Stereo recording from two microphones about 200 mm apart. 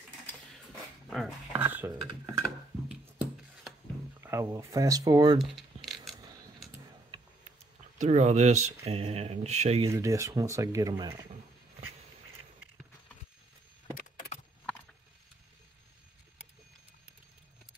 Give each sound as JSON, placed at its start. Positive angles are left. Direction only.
{"t": 1.1, "sound": "a sound", "side_deg": -5}
{"t": 4.2, "sound": "speech", "side_deg": -15}
{"t": 5.4, "sound": "a sound", "side_deg": 0}
{"t": 8.0, "sound": "speech", "side_deg": -35}
{"t": 9.8, "sound": "speech", "side_deg": -15}
{"t": 13.9, "sound": "vehicle", "side_deg": 40}